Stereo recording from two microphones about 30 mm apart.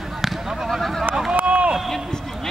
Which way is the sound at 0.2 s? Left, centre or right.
Centre.